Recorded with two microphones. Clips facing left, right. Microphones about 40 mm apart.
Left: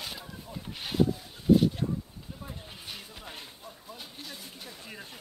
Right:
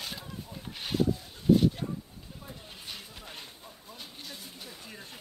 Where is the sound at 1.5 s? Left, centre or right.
Centre.